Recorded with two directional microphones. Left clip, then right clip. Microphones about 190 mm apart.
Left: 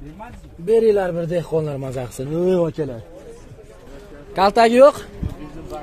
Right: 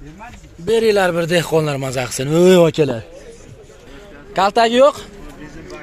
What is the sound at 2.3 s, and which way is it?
Speech, 20° right (ahead or behind).